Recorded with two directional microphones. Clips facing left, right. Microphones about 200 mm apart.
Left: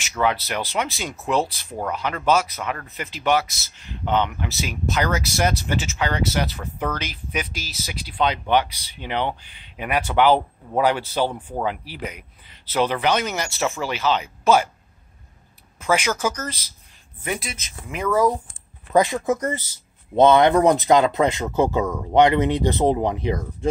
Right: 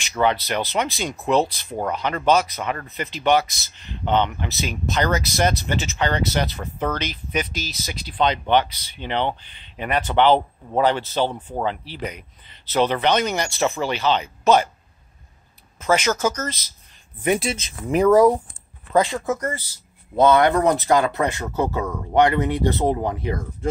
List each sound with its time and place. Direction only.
0.2 s speech: 5° left (ahead or behind)
15.8 s speech: 10° left (ahead or behind)
17.2 s speech: 25° right (ahead or behind)
18.9 s speech: 15° left (ahead or behind)